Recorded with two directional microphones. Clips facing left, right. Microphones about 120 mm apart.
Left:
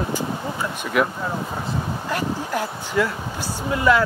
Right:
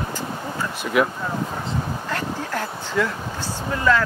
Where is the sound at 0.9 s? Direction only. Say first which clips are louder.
Right 1 dB; centre (ahead or behind).